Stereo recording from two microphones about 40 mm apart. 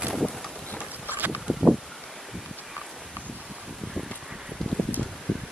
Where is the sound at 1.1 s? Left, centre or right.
Right.